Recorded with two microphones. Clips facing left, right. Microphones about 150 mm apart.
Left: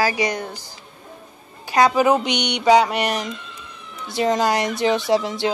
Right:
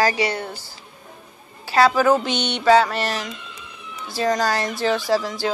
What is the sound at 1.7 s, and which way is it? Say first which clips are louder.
Speech: even; 20° left (ahead or behind).